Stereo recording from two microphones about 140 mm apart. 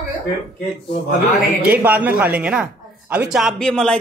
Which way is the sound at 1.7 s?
10° right (ahead or behind).